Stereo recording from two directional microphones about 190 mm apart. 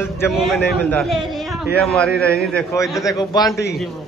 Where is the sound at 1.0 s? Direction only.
Centre (ahead or behind).